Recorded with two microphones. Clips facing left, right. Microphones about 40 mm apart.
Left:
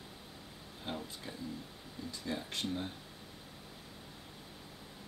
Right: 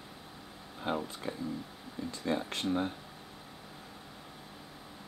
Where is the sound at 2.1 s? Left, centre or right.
Right.